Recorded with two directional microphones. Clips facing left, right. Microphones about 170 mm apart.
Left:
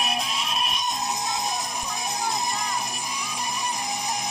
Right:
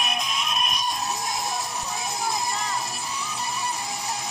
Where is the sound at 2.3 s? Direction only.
15° left (ahead or behind).